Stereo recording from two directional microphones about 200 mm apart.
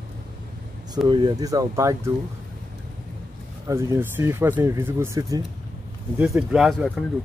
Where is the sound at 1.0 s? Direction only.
25° right (ahead or behind).